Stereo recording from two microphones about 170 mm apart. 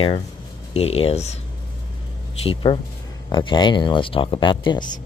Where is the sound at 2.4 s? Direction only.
30° left (ahead or behind).